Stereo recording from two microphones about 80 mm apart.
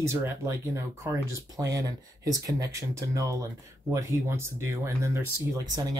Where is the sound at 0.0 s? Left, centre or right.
Right.